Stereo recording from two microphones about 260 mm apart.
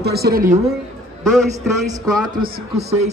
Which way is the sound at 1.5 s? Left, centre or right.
Centre.